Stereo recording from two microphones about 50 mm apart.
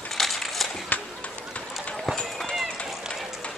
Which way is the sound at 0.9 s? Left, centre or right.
Left.